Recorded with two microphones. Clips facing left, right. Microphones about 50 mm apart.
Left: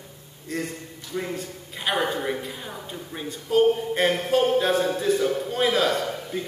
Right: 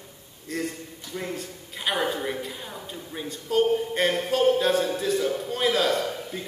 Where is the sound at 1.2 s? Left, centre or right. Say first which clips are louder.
Left 3 dB; centre.